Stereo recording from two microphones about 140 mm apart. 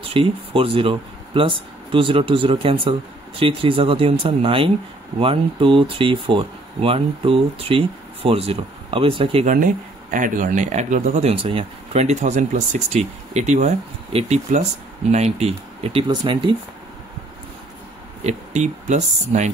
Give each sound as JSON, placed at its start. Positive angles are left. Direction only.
{"t": 0.1, "sound": "speech", "side_deg": -40}
{"t": 10.1, "sound": "speech", "side_deg": -70}
{"t": 18.2, "sound": "speech", "side_deg": -55}